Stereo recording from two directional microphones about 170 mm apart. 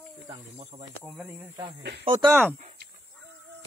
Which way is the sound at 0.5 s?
35° right (ahead or behind).